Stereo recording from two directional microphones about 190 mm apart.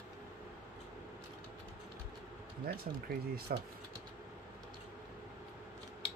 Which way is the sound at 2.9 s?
45° right (ahead or behind).